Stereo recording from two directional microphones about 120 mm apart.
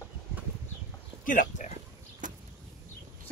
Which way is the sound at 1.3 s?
90° left.